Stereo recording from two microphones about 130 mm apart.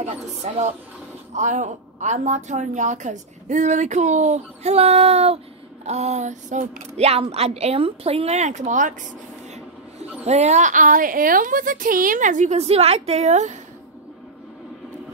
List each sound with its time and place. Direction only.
0.0 s a woman's voice: 60° right (ahead or behind)
9.9 s a woman's voice: 55° right (ahead or behind)